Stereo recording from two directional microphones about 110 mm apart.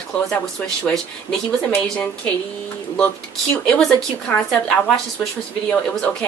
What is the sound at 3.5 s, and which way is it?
Speech, 10° left (ahead or behind).